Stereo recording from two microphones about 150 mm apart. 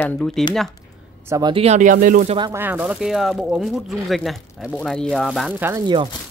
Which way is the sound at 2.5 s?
10° right (ahead or behind).